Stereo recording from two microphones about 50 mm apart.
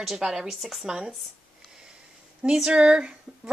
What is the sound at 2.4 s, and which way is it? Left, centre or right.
Speech, centre.